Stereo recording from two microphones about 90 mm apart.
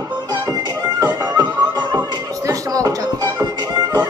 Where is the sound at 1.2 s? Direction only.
50° right (ahead or behind).